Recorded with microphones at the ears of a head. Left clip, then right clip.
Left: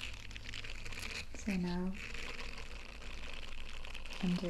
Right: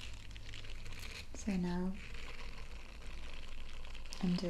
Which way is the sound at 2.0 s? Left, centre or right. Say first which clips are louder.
Left 6 dB; left.